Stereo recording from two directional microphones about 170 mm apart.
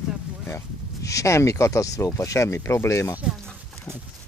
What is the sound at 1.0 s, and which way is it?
Speech, 20° left (ahead or behind).